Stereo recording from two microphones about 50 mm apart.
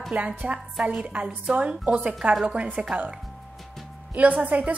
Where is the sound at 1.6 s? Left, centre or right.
Right.